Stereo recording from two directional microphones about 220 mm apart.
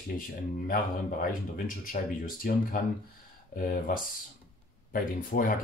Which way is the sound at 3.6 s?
40° left (ahead or behind).